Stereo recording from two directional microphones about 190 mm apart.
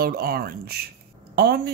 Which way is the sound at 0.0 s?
50° right (ahead or behind).